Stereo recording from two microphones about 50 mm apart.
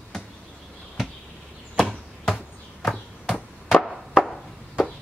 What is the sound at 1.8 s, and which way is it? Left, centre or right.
Chop, centre.